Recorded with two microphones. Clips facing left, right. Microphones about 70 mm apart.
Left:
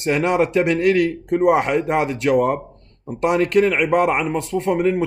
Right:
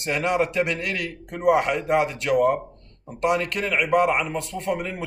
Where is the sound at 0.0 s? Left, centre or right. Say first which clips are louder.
Left 5 dB; left.